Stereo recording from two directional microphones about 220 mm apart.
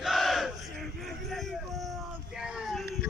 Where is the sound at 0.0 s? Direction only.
Centre (ahead or behind).